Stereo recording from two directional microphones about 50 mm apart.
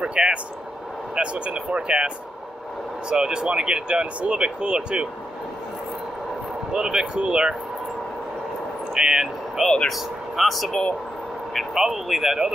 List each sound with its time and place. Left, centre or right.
0.0 s speech: right
6.7 s speech: centre
8.9 s speech: centre
9.8 s speech: centre